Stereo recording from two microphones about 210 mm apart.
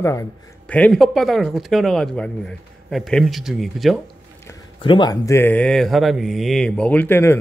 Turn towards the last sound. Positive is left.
turn(degrees=10)  # may be behind; listen again after turning